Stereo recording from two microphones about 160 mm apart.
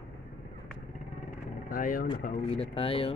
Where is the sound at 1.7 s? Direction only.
60° left (ahead or behind).